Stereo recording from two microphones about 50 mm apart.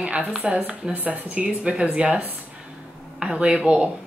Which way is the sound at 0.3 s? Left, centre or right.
Centre.